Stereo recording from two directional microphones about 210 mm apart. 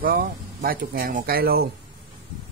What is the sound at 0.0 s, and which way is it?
Speech, 45° right (ahead or behind).